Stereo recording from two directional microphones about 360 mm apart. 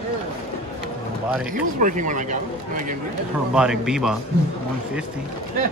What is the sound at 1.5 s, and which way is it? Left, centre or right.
Speech, right.